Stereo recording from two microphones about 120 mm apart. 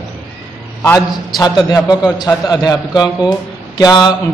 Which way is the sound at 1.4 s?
35° left (ahead or behind).